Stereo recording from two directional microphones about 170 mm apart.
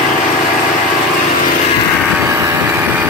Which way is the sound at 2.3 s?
20° right (ahead or behind).